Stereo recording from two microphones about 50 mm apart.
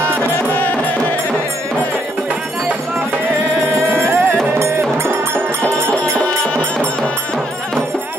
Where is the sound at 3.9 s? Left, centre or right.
Right.